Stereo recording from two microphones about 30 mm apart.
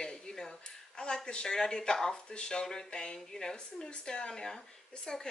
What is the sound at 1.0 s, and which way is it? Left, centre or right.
Speech, left.